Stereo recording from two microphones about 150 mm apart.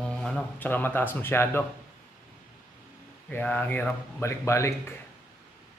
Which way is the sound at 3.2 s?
10° left (ahead or behind).